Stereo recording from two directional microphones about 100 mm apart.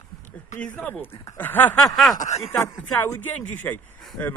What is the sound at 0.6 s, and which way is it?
Speech, 15° left (ahead or behind).